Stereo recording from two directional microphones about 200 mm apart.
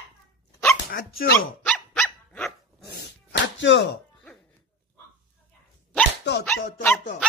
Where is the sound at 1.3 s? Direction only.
10° left (ahead or behind).